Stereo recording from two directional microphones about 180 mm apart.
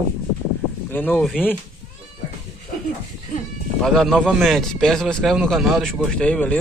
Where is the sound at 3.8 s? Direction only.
Centre (ahead or behind).